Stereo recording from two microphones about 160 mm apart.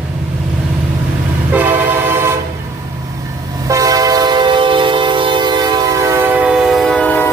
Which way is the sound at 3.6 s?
20° right (ahead or behind).